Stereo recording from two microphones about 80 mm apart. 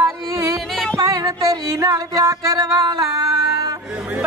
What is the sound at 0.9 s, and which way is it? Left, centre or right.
Music, right.